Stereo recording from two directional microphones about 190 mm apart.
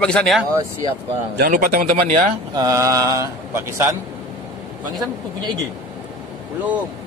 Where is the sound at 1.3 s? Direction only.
50° right (ahead or behind).